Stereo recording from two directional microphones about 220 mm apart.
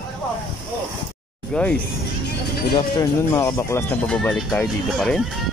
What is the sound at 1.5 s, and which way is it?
Speech, 5° left (ahead or behind).